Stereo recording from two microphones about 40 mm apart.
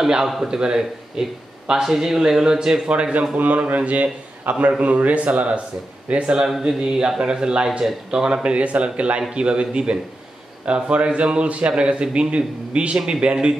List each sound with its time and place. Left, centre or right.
0.0 s a man's voice: centre
2.9 s a man's voice: right
3.3 s a man's voice: right
6.7 s a man's voice: centre